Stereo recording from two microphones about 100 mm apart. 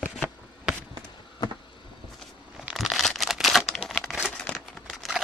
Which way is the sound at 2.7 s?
Centre (ahead or behind).